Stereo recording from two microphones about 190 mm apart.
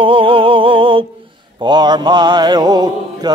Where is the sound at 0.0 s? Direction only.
30° right (ahead or behind).